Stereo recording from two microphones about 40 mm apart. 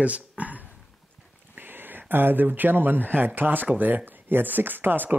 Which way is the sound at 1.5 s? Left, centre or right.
Right.